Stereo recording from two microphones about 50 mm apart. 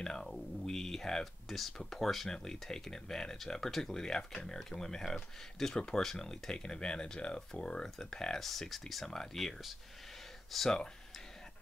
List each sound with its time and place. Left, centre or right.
0.0 s speech: centre